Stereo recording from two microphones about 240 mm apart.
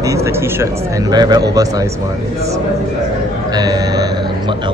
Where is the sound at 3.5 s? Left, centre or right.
Centre.